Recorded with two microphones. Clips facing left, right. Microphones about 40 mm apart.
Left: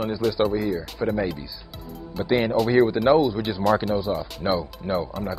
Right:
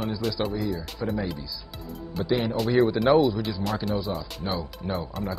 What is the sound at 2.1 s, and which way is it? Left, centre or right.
Speech, centre.